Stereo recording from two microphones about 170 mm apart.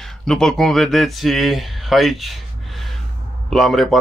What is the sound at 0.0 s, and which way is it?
Speech, 5° left (ahead or behind).